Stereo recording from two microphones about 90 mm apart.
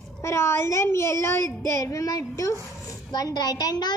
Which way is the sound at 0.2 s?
30° left (ahead or behind).